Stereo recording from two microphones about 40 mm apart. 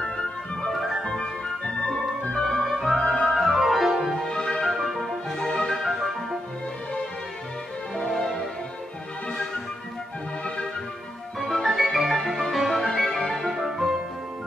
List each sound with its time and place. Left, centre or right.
0.0 s music: left
0.7 s music: centre
1.0 s music: left
2.3 s music: centre
4.2 s music: centre
5.4 s music: centre
7.9 s music: centre
11.3 s music: centre